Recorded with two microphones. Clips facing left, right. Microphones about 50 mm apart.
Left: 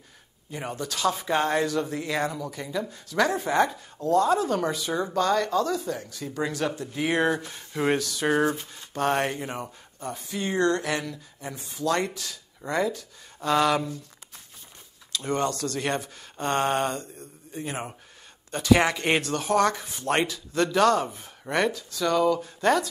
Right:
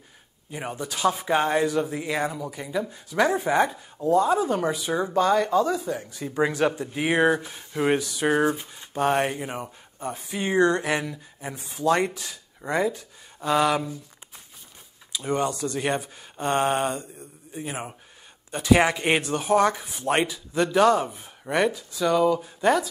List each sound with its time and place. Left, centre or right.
0.5 s speech: centre
15.1 s speech: centre